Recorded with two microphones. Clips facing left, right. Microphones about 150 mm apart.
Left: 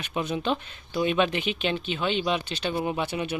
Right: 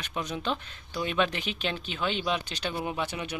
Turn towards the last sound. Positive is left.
turn(degrees=10)  # may be behind; listen again after turning